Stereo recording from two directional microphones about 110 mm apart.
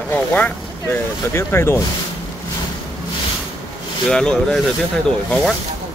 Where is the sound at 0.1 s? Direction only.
15° left (ahead or behind).